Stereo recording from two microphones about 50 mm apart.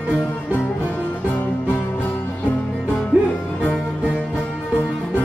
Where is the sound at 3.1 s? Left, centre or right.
Right.